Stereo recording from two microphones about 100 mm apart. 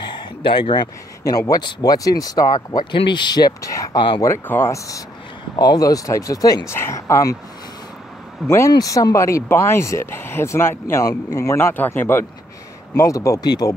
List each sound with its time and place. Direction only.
0.1 s speech: 50° left (ahead or behind)
4.5 s speech: 25° left (ahead or behind)
6.7 s speech: 25° left (ahead or behind)
8.5 s speech: 30° left (ahead or behind)
11.1 s speech: 35° left (ahead or behind)